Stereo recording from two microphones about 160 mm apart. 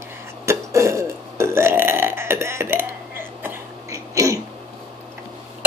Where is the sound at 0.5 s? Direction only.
20° right (ahead or behind).